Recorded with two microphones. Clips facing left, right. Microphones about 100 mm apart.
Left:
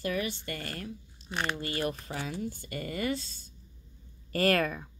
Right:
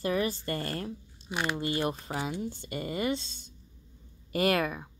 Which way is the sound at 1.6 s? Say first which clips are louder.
Right 2 dB; 25° right (ahead or behind).